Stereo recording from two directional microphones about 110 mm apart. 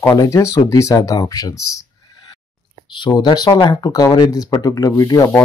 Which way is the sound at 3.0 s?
40° left (ahead or behind).